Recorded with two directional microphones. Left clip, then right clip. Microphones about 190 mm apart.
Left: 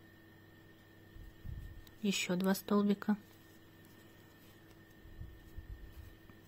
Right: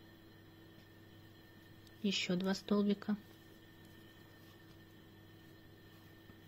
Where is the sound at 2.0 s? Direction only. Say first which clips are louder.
Left 1 dB; 30° left (ahead or behind).